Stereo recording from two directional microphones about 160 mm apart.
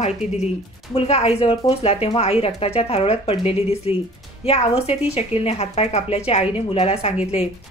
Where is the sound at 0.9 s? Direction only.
40° left (ahead or behind).